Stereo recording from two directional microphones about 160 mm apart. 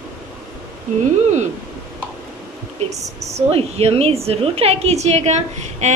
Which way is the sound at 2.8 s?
45° right (ahead or behind).